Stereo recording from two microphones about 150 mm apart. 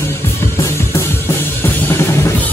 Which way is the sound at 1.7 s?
15° left (ahead or behind).